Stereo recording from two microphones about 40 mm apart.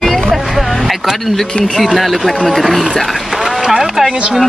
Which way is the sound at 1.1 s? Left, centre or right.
Centre.